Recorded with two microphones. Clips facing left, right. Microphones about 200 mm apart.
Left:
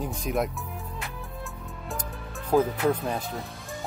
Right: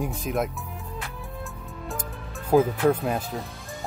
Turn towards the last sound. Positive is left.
turn(degrees=-5)  # may be behind; listen again after turning